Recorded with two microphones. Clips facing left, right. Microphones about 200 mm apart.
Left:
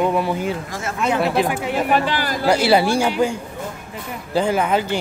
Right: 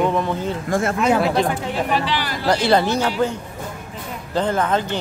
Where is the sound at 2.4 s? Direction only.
10° left (ahead or behind).